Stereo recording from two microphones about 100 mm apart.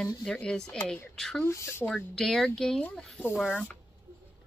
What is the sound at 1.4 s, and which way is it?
Speech, 25° left (ahead or behind).